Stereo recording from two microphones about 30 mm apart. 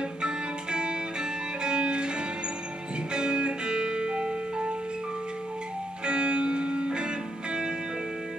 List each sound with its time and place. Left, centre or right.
0.2 s music: right
6.0 s music: right